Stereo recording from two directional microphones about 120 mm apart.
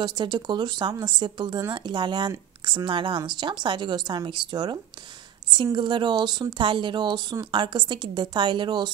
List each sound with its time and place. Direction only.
0.0 s a woman's voice: 40° right (ahead or behind)